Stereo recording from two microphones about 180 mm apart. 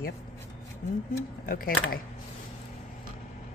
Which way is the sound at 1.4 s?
55° left (ahead or behind).